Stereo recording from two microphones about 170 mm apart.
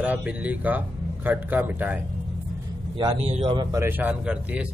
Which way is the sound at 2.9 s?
35° right (ahead or behind).